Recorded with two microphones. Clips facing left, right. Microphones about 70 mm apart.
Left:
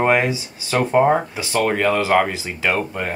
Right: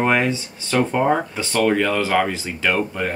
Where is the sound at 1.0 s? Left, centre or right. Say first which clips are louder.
Left 2 dB; centre.